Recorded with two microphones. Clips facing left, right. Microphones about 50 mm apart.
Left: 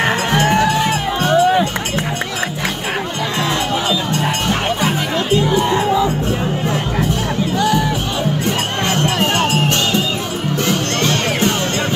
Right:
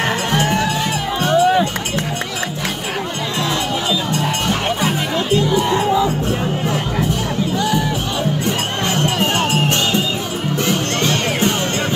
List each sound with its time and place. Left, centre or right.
0.0 s music: left
4.8 s chatter: left
9.0 s music: left
10.7 s music: left